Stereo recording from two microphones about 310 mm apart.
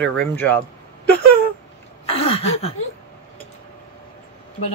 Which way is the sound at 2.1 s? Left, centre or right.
Centre.